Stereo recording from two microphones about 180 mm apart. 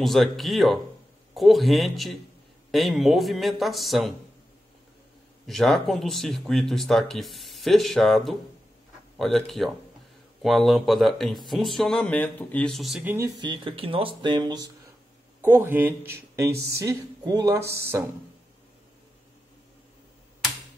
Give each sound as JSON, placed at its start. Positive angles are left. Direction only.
{"t": 0.0, "sound": "speech", "side_deg": 0}
{"t": 5.5, "sound": "speech", "side_deg": 0}
{"t": 13.4, "sound": "speech", "side_deg": -25}